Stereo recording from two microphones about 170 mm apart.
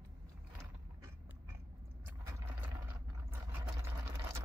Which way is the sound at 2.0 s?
10° right (ahead or behind).